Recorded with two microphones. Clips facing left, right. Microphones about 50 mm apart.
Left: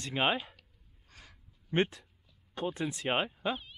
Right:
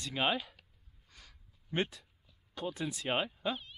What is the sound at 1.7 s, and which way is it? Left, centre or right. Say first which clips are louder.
Speech: left 5 dB; left.